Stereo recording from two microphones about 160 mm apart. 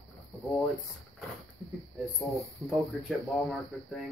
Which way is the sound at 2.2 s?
Centre (ahead or behind).